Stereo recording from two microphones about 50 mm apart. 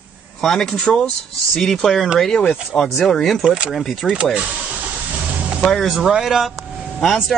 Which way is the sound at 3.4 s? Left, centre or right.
Centre.